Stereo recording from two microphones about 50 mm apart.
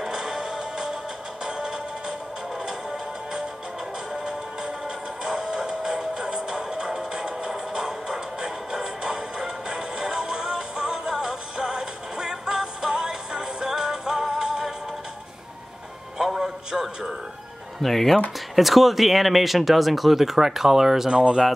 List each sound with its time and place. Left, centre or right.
0.0 s music: centre
16.2 s music: centre
17.8 s speech: centre
21.1 s speech: centre